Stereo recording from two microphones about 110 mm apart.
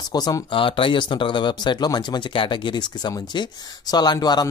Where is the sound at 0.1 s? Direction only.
35° left (ahead or behind).